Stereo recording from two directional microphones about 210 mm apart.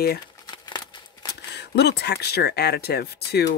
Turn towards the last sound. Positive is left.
turn(degrees=50)  # may be behind; listen again after turning